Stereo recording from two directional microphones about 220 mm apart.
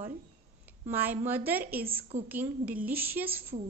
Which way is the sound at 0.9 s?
10° right (ahead or behind).